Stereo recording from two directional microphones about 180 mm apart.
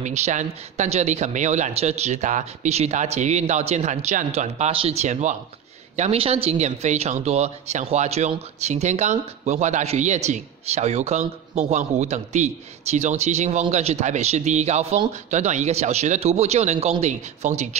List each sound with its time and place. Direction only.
0.0 s speech: 40° right (ahead or behind)